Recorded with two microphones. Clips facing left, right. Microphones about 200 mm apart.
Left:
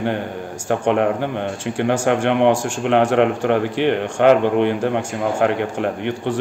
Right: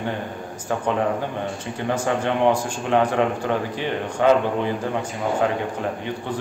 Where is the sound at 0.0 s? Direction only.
75° left (ahead or behind).